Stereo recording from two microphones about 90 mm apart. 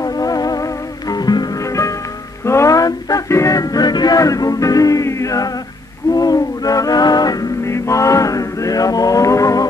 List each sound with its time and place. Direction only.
0.0 s music: 40° left (ahead or behind)
7.6 s music: 35° left (ahead or behind)